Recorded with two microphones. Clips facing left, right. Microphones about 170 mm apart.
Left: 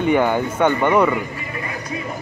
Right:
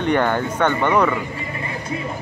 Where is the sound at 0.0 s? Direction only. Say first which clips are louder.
Left 2 dB; 10° left (ahead or behind).